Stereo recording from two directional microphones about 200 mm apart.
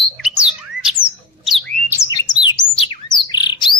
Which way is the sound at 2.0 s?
20° left (ahead or behind).